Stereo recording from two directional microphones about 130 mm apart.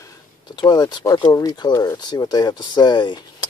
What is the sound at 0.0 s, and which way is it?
Speech, 35° left (ahead or behind).